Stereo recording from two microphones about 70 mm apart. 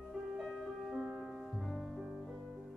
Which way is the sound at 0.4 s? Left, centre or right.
Centre.